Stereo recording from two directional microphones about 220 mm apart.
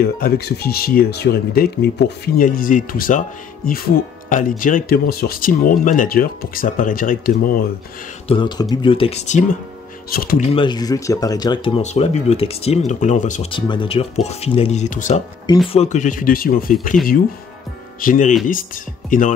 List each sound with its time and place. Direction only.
0.0 s speech: 45° left (ahead or behind)
8.3 s speech: 20° left (ahead or behind)
10.0 s speech: 40° left (ahead or behind)
10.5 s speech: 20° left (ahead or behind)
13.5 s speech: 20° left (ahead or behind)
15.4 s speech: 20° left (ahead or behind); by 19.3 s 35° left (ahead or behind)